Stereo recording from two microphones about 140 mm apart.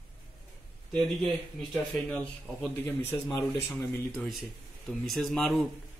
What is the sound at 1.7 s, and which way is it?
Speech, 10° left (ahead or behind).